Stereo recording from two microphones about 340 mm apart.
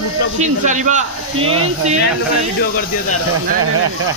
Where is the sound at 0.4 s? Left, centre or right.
Right.